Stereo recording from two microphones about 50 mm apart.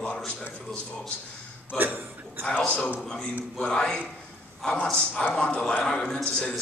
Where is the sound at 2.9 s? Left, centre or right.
Centre.